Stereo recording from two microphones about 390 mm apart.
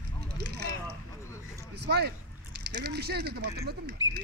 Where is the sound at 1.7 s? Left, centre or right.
Right.